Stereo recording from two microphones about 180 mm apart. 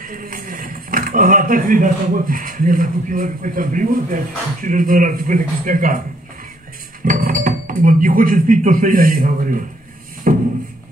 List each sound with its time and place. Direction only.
0.0 s speech: 50° right (ahead or behind)
7.1 s speech: 50° right (ahead or behind)
10.3 s music: 45° right (ahead or behind)